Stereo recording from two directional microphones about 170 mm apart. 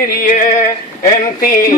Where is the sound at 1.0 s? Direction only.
55° left (ahead or behind).